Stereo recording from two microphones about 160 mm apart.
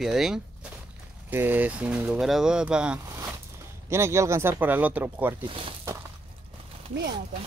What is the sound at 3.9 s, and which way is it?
Speech, 15° right (ahead or behind).